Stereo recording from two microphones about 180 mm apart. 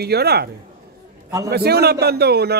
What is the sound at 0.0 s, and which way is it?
Speech, 65° right (ahead or behind).